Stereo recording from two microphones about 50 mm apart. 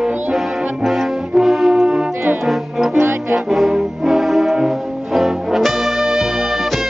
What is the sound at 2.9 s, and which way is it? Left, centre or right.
Music, right.